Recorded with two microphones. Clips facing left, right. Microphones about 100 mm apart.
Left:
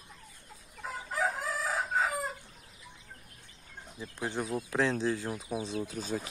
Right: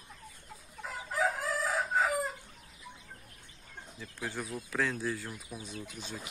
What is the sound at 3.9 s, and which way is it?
Speech, 20° left (ahead or behind).